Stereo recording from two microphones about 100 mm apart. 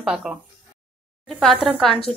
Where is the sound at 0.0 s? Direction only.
5° right (ahead or behind).